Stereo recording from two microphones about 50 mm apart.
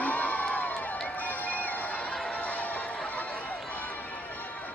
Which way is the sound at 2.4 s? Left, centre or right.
Left.